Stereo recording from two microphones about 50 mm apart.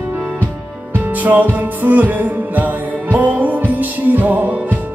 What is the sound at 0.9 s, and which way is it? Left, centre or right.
Music, right.